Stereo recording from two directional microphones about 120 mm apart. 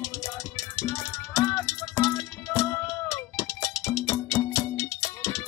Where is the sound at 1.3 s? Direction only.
20° left (ahead or behind).